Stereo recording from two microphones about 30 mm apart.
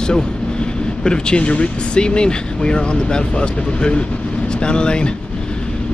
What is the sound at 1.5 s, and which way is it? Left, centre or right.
Speech, left.